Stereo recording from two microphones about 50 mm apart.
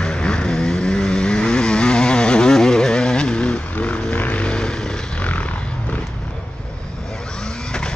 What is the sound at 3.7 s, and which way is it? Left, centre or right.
Vehicle, left.